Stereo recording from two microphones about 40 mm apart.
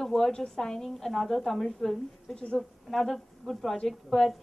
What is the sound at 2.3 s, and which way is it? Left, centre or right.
Speech, left.